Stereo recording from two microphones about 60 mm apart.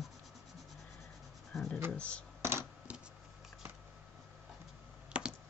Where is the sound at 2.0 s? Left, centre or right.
Left.